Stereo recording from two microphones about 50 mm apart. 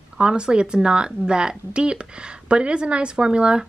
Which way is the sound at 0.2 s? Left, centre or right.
Centre.